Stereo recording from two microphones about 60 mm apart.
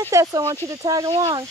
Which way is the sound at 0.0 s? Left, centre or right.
Right.